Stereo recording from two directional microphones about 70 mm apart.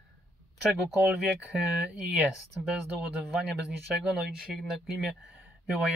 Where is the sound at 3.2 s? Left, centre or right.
Centre.